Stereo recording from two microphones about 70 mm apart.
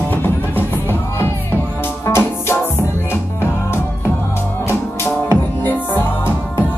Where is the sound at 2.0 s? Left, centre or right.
Left.